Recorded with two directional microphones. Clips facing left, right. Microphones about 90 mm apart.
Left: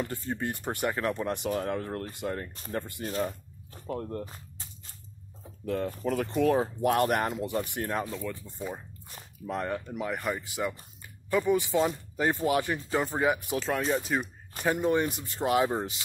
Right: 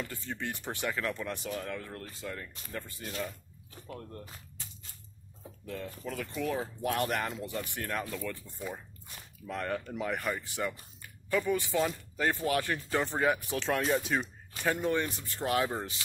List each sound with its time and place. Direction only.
0.0 s speech: 40° left (ahead or behind)
5.7 s speech: 50° left (ahead or behind)
7.7 s speech: 25° left (ahead or behind); by 14.2 s 5° left (ahead or behind)
14.6 s speech: 15° left (ahead or behind)